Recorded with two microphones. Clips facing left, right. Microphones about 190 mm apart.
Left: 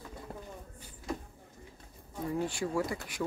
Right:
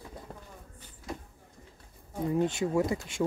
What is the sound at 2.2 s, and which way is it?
Speech, 20° right (ahead or behind).